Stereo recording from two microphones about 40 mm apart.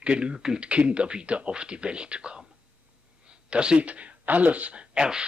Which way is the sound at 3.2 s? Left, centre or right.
Right.